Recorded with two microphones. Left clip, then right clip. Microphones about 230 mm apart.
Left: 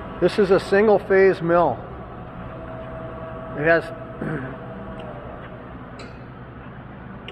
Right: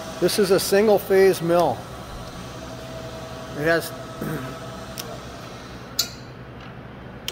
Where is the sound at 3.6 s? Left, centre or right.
Centre.